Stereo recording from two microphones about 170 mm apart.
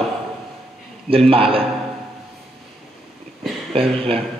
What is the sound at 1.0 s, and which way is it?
Speech, 35° right (ahead or behind).